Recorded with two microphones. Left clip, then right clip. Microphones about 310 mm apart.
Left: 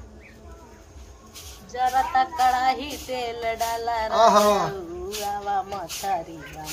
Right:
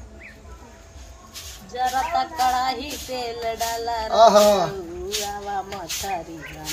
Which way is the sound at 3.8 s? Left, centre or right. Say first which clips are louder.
Right 4 dB; centre.